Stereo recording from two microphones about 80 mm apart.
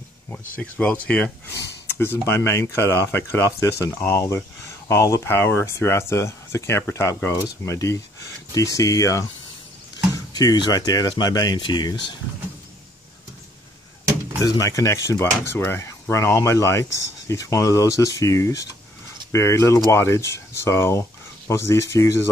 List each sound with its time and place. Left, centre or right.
0.3 s speech: centre
1.9 s a sound: left
2.2 s speech: left
14.4 s speech: left